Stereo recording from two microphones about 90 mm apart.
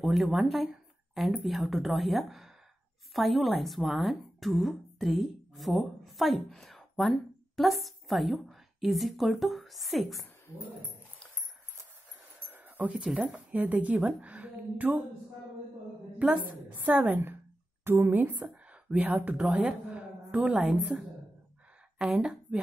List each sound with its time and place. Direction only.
0.0 s speech: centre (ahead or behind)
12.4 s speech: 20° right (ahead or behind)
16.2 s a woman's voice: 15° right (ahead or behind)
19.9 s a sound: 15° right (ahead or behind)
20.9 s a woman's voice: 15° right (ahead or behind)